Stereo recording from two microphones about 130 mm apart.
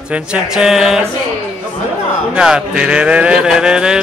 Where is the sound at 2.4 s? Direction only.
5° right (ahead or behind).